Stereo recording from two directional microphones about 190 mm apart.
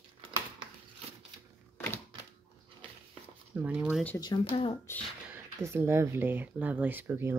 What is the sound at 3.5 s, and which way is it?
Zipper, 5° right (ahead or behind).